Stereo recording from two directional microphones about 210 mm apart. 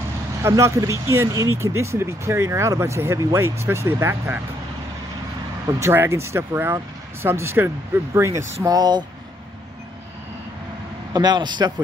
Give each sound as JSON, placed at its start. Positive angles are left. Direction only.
{"t": 0.4, "sound": "speech", "side_deg": -15}
{"t": 5.7, "sound": "a man's voice", "side_deg": -15}
{"t": 11.1, "sound": "a man's voice", "side_deg": -20}